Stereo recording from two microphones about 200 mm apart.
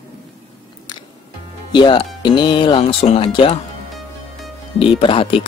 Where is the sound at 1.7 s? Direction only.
25° left (ahead or behind).